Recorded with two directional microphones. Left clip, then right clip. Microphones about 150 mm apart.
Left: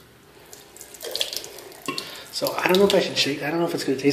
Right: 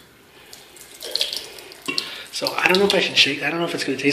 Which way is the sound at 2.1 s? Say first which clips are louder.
Right 1 dB; 20° left (ahead or behind).